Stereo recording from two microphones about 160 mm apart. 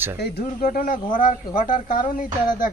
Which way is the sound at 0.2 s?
60° left (ahead or behind).